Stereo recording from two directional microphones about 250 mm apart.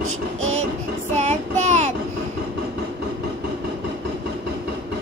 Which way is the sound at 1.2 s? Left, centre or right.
Right.